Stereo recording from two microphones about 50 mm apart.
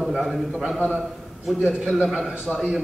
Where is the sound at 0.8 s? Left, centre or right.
Right.